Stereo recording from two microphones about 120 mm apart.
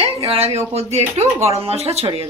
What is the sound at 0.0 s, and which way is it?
Speech, 55° right (ahead or behind).